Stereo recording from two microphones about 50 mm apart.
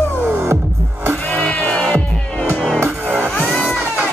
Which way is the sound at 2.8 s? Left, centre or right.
Right.